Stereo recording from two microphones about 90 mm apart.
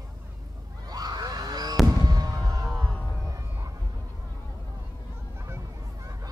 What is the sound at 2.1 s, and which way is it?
Fireworks, 45° right (ahead or behind).